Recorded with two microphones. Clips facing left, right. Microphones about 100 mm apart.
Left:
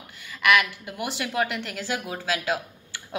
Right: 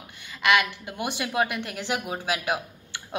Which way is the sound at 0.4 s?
25° right (ahead or behind).